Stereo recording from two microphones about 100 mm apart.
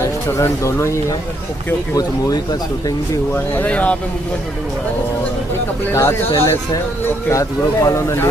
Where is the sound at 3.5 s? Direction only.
15° left (ahead or behind).